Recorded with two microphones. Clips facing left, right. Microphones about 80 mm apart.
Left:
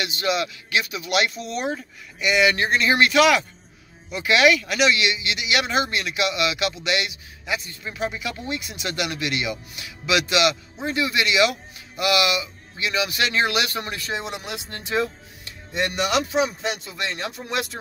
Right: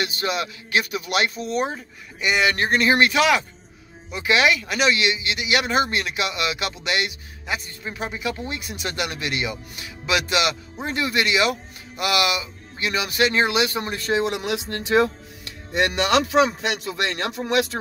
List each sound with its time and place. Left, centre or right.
0.0 s speech: right
14.4 s speech: right
15.7 s speech: right